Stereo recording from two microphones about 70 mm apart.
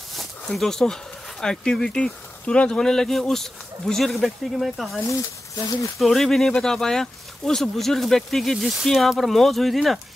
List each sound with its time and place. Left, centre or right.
0.1 s a sound: centre
1.4 s speech: centre
5.6 s speech: left
5.9 s speech: centre